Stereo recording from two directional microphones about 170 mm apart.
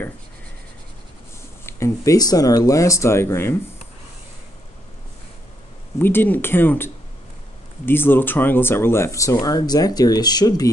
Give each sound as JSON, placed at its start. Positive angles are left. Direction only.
{"t": 1.7, "sound": "speech", "side_deg": 15}
{"t": 5.9, "sound": "speech", "side_deg": 10}